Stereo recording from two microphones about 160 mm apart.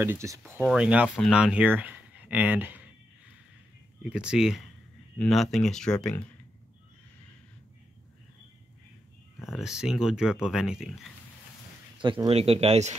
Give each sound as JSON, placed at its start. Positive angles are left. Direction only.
{"t": 0.0, "sound": "speech", "side_deg": -15}
{"t": 4.0, "sound": "speech", "side_deg": -5}
{"t": 9.5, "sound": "speech", "side_deg": -5}
{"t": 12.0, "sound": "speech", "side_deg": -30}